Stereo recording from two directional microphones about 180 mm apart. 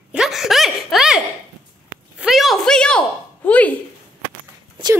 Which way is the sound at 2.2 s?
Centre (ahead or behind).